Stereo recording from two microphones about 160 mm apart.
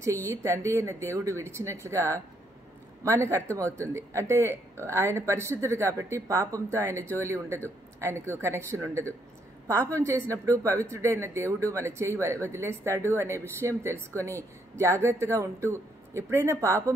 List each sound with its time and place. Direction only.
0.3 s a woman's voice: 15° right (ahead or behind)